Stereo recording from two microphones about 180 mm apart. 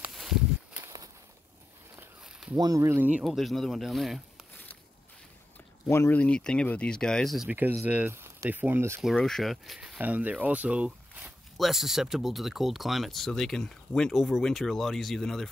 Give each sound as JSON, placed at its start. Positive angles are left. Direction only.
{"t": 0.0, "sound": "a sound", "side_deg": 0}
{"t": 0.8, "sound": "walk", "side_deg": -20}
{"t": 2.0, "sound": "a sound", "side_deg": -5}
{"t": 2.5, "sound": "speech", "side_deg": -20}
{"t": 5.9, "sound": "speech", "side_deg": 15}
{"t": 9.0, "sound": "speech", "side_deg": 5}